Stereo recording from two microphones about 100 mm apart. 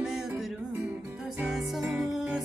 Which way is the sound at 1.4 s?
Centre (ahead or behind).